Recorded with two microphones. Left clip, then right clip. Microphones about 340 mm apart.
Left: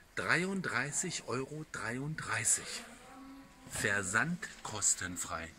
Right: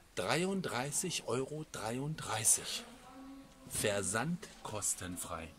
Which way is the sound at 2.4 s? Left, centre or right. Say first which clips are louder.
Right 2 dB; right.